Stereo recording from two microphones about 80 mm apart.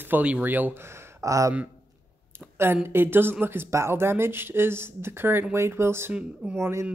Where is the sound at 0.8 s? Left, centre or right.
Right.